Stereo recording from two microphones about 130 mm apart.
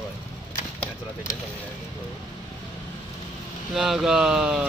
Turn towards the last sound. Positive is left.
turn(degrees=-5)  # may be behind; listen again after turning